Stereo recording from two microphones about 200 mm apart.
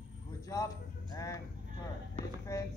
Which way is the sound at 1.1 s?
15° left (ahead or behind).